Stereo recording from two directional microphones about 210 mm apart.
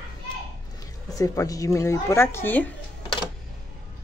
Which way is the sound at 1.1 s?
15° left (ahead or behind).